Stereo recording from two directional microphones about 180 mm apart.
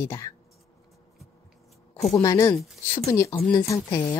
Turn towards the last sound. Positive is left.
turn(degrees=15)  # may be behind; listen again after turning